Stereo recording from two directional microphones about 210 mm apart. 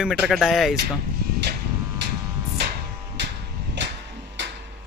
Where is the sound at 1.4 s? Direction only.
55° right (ahead or behind).